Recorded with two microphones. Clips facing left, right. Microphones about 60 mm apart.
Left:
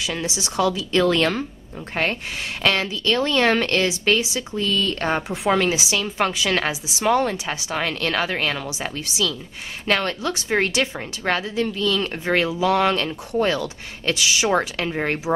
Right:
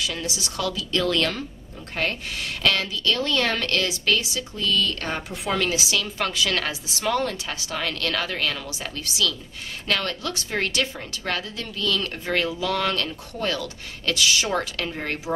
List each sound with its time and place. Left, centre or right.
0.0 s speech: left
15.3 s speech: left